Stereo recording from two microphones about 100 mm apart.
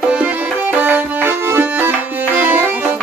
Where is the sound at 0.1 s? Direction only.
15° right (ahead or behind).